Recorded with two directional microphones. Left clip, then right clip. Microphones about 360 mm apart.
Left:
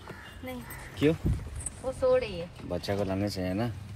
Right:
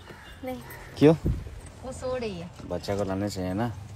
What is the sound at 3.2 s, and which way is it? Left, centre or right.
Speech, right.